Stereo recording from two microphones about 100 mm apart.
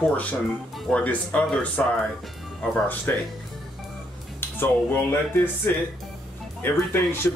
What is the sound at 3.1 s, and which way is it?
Speech, 20° left (ahead or behind).